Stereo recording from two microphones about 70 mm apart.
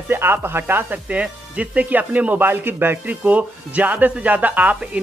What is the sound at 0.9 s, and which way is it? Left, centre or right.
Speech, centre.